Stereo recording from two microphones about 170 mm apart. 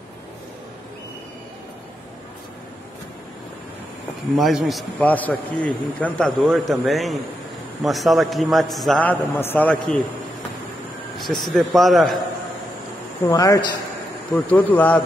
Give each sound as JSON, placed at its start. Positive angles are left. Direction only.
{"t": 4.4, "sound": "a man's voice", "side_deg": 0}
{"t": 11.1, "sound": "a man's voice", "side_deg": 0}
{"t": 13.3, "sound": "speech", "side_deg": 20}
{"t": 14.3, "sound": "a man's voice", "side_deg": 10}